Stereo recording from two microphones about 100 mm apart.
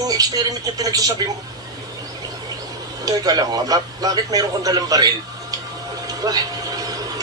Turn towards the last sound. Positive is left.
turn(degrees=-40)  # may be behind; listen again after turning